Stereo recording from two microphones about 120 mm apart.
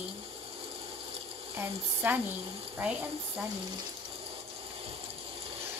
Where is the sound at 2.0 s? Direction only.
15° right (ahead or behind).